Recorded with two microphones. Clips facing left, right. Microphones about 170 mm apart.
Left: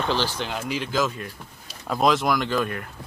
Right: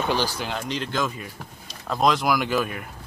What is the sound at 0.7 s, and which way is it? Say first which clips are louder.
Speech: left 3 dB; 5° left (ahead or behind).